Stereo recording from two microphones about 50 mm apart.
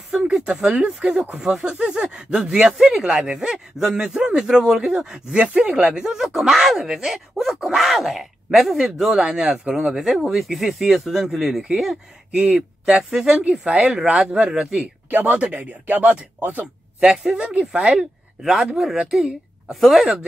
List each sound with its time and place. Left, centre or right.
0.1 s speech: centre
6.2 s a woman's voice: centre
15.0 s speech: right
15.3 s speech: right
16.3 s speech: right
17.0 s a woman's voice: centre